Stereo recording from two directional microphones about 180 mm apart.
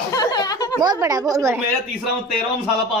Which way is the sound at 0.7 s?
20° right (ahead or behind).